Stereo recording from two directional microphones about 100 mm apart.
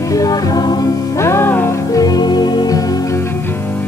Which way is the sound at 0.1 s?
35° left (ahead or behind).